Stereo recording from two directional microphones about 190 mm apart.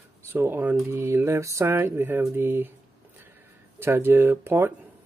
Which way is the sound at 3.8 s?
10° right (ahead or behind).